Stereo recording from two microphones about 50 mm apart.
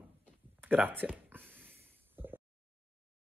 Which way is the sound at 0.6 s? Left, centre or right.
Right.